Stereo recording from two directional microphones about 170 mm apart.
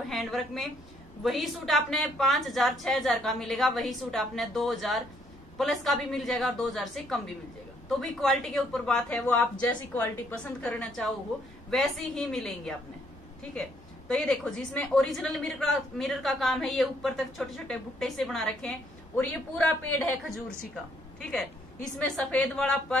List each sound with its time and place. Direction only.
0.1 s a woman's voice: centre (ahead or behind)
21.2 s a woman's voice: 5° left (ahead or behind)